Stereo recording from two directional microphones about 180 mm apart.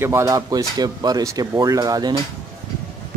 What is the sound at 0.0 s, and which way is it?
Speech, 15° right (ahead or behind).